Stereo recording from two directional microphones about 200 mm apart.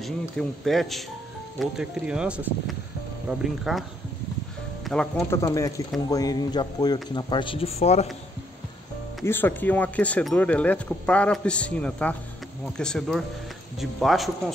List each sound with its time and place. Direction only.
0.0 s speech: centre (ahead or behind)
4.8 s speech: 5° left (ahead or behind); by 8.1 s 30° left (ahead or behind)
9.2 s speech: 10° left (ahead or behind)